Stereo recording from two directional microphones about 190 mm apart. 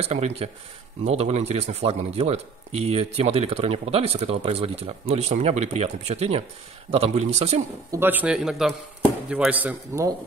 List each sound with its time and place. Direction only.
0.0 s speech: 35° right (ahead or behind)
7.9 s a man's voice: 10° right (ahead or behind)